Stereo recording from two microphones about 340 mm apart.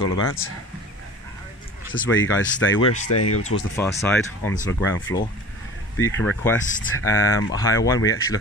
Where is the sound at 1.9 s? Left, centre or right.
Left.